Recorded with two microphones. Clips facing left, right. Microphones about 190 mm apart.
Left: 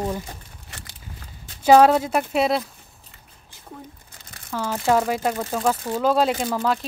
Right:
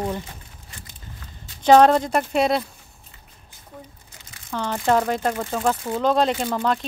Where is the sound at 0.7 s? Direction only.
80° left.